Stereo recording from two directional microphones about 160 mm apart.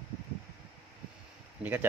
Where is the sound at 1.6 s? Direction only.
10° right (ahead or behind).